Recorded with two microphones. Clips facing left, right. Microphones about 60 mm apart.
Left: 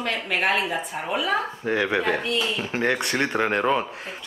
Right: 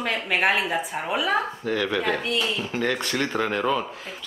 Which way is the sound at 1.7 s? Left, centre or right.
Left.